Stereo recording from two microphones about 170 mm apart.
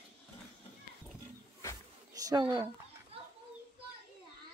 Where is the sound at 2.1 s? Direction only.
20° right (ahead or behind).